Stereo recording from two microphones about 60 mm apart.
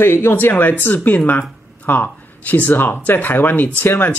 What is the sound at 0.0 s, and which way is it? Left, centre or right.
Speech, left.